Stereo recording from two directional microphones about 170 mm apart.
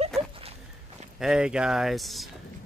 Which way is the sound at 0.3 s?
35° right (ahead or behind).